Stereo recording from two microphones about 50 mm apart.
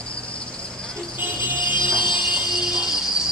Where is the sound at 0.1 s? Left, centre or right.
Left.